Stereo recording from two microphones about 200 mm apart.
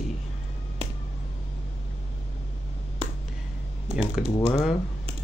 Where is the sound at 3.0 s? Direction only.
30° right (ahead or behind).